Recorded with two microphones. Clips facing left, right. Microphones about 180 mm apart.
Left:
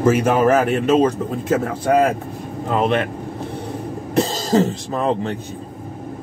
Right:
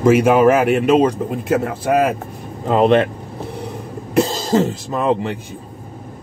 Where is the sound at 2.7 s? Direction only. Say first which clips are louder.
Right 6 dB; 40° right (ahead or behind).